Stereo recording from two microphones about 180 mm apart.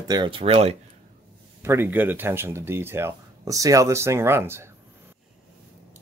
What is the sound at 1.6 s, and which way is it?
Speech, 15° right (ahead or behind).